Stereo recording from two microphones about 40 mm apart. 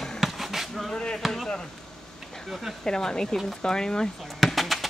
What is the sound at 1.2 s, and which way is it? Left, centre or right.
Speech, centre.